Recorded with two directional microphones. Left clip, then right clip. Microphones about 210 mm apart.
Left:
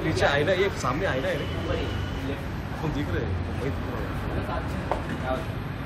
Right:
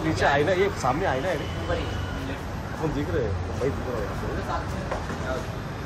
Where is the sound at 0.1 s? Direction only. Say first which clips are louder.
Right 1 dB; 30° right (ahead or behind).